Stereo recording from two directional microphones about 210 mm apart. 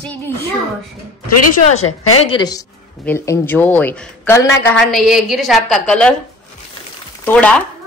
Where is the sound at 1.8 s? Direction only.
90° left.